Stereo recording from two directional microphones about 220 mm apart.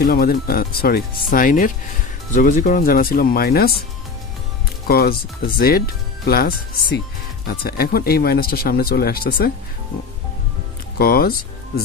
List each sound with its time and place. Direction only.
0.0 s speech: 45° left (ahead or behind)
4.8 s speech: 45° left (ahead or behind)
11.0 s speech: 45° left (ahead or behind)